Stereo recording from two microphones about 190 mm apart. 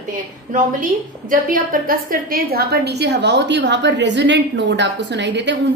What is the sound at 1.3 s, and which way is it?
A woman's voice, 45° right (ahead or behind).